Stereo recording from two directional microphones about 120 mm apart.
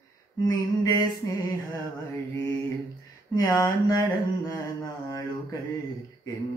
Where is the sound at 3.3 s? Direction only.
30° left (ahead or behind).